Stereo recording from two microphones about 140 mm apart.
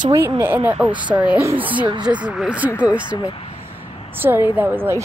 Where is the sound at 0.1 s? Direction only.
15° right (ahead or behind).